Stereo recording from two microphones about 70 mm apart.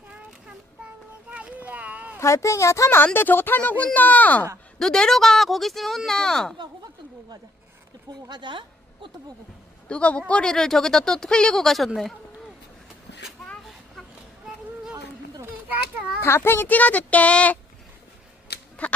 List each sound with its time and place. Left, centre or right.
1.3 s a sound: centre
2.1 s a woman's voice: left
3.0 s speech: left
4.7 s speech: centre
8.3 s a woman's voice: right
9.8 s speech: centre
13.4 s a sound: centre
15.4 s children playing: right
16.2 s a child's voice: left
16.6 s speech: left
18.8 s duck: centre